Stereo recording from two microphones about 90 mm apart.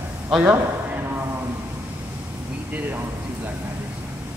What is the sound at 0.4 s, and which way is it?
Speech, 20° right (ahead or behind).